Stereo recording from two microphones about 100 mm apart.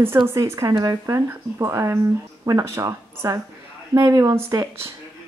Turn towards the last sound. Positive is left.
turn(degrees=-30)  # may be behind; listen again after turning